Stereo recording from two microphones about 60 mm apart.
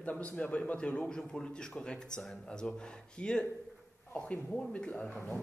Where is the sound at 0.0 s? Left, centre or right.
Left.